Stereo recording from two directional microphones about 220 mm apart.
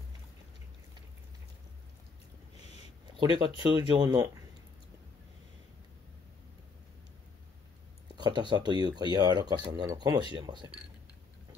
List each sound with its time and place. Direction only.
3.3 s speech: 20° right (ahead or behind)
8.2 s speech: 20° right (ahead or behind)